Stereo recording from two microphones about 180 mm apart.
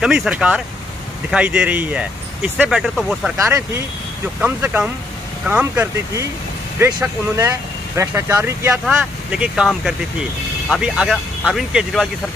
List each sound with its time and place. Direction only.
0.0 s speech: 5° right (ahead or behind)
4.4 s speech: 5° right (ahead or behind)